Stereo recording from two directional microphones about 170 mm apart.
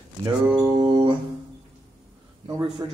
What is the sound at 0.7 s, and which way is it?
Music, 25° right (ahead or behind).